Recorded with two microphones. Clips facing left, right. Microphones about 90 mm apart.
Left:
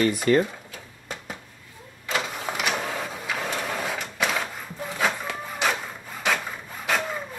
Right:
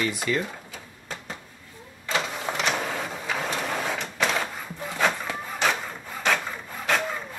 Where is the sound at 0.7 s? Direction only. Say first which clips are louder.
Even; 5° left (ahead or behind).